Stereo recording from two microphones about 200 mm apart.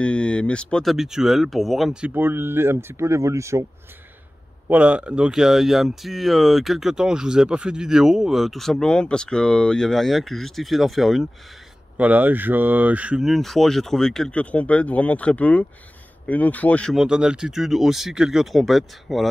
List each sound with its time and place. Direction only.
0.0 s speech: 5° left (ahead or behind); by 3.6 s 15° right (ahead or behind)
4.6 s speech: 5° right (ahead or behind)